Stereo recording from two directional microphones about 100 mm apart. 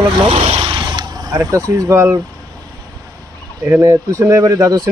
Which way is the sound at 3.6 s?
30° right (ahead or behind).